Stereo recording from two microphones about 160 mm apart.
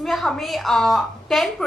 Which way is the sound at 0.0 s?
Centre (ahead or behind).